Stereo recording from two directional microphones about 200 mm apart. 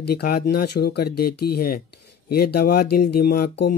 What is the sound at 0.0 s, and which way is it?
Speech, 50° left (ahead or behind).